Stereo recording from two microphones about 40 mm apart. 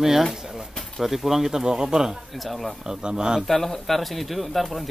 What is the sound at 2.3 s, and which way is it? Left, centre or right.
Speech, centre.